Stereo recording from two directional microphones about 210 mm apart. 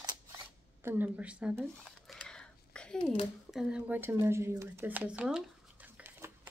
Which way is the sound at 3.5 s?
5° right (ahead or behind).